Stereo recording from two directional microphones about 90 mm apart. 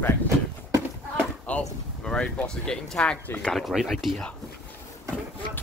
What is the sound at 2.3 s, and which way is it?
Speech, 10° left (ahead or behind).